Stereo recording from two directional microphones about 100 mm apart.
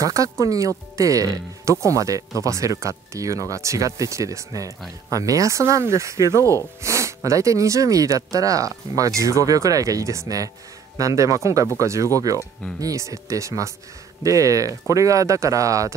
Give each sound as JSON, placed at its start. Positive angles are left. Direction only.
{"t": 0.0, "sound": "speech", "side_deg": -35}